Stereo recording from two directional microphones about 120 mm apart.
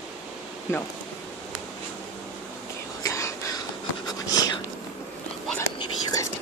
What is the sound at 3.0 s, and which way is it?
Whispering, 25° left (ahead or behind).